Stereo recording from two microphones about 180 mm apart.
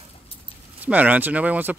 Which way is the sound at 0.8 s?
10° right (ahead or behind).